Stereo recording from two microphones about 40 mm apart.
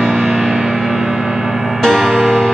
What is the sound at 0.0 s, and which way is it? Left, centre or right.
Music, right.